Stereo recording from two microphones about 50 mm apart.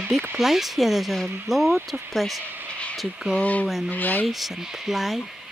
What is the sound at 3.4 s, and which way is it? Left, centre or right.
Speech, left.